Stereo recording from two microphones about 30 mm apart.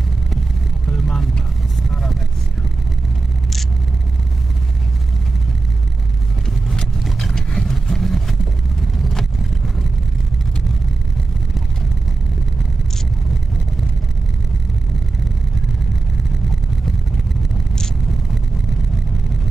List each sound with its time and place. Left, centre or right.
0.8 s vehicle: centre
7.3 s vehicle: centre